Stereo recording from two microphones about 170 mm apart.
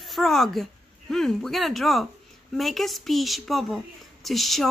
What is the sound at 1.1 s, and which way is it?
A woman's voice, centre (ahead or behind).